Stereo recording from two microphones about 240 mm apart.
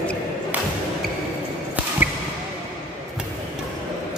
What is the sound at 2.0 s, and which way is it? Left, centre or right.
Basketball bounce, centre.